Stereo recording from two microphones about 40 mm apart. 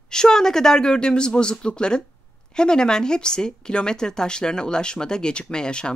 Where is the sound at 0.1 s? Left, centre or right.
Centre.